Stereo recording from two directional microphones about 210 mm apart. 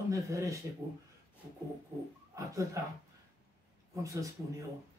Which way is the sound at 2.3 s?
15° right (ahead or behind).